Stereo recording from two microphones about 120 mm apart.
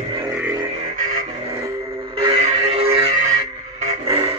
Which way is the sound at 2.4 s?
55° right (ahead or behind).